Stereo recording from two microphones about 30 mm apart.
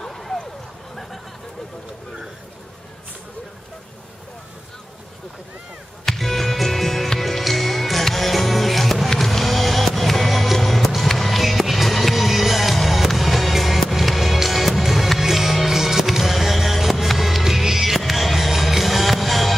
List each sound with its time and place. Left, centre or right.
0.0 s a sound: centre
6.0 s music: centre
17.9 s music: centre